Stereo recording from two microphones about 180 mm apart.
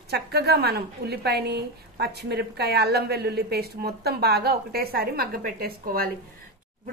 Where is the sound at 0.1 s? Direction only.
65° right (ahead or behind).